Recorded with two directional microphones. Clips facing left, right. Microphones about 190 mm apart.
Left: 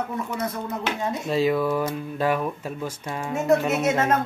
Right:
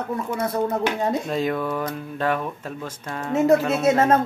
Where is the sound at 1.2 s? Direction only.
5° left (ahead or behind).